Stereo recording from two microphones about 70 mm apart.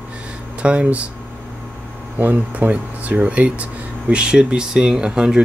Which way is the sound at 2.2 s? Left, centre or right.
Right.